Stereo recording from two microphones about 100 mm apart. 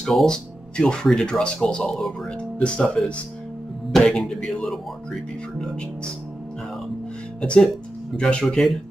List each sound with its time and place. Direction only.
0.0 s speech: 5° left (ahead or behind)
7.4 s speech: 10° left (ahead or behind)